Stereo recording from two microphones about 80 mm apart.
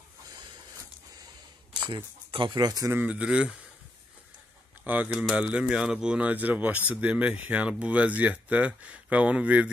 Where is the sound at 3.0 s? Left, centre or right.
Centre.